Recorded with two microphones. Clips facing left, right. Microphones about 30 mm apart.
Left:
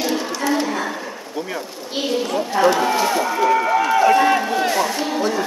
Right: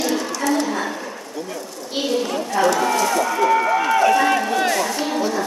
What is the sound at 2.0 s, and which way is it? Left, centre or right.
A woman's voice, centre.